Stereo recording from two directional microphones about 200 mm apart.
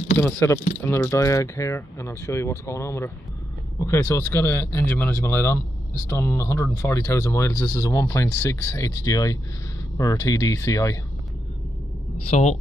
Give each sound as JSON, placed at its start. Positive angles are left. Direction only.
{"t": 0.2, "sound": "speech", "side_deg": 10}
{"t": 12.3, "sound": "speech", "side_deg": 35}